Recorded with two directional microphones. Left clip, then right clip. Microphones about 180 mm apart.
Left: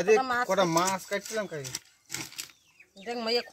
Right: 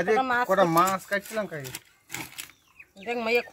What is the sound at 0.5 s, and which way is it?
Speech, 35° left (ahead or behind).